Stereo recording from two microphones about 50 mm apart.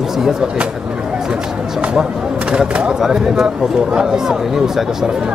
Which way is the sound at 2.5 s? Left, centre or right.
Centre.